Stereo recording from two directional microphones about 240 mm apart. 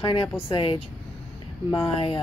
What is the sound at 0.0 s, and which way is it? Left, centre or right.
Speech, left.